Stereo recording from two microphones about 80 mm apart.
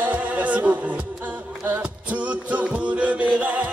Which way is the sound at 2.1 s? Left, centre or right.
Centre.